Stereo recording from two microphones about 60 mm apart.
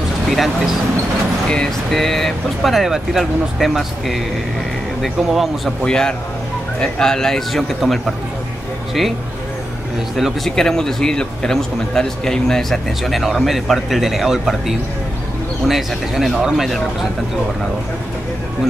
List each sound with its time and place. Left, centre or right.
0.3 s a man's voice: centre
5.8 s speech: centre
10.1 s a man's voice: centre
10.5 s a man's voice: centre
16.3 s speech: centre
16.6 s a man's voice: centre